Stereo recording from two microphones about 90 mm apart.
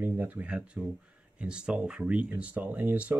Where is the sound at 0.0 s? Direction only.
20° right (ahead or behind).